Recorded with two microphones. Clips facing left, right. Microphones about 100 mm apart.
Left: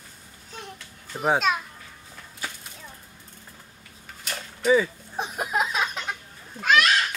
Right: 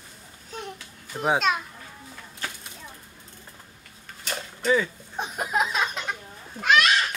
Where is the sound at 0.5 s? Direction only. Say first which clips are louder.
Right 4 dB; centre (ahead or behind).